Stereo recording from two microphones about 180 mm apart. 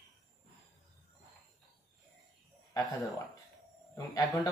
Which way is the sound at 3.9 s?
20° left (ahead or behind).